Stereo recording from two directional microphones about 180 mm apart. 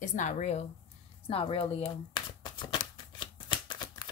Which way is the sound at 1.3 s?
30° left (ahead or behind).